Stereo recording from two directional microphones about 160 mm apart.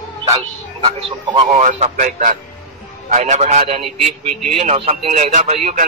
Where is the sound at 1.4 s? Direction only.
50° right (ahead or behind).